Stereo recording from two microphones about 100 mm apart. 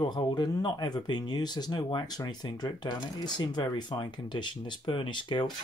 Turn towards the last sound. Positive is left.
turn(degrees=55)  # may be behind; listen again after turning